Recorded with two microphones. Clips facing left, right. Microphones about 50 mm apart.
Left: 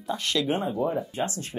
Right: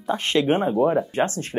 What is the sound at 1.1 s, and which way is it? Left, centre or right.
Speech, right.